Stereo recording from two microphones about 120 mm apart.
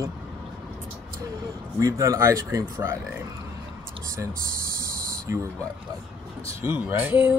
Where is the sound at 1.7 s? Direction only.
25° right (ahead or behind).